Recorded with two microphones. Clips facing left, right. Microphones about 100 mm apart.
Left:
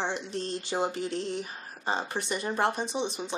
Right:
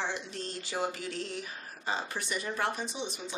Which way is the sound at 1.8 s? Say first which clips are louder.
Left 4 dB; 30° left (ahead or behind).